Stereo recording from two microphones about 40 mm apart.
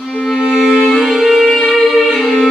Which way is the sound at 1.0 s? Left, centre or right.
Centre.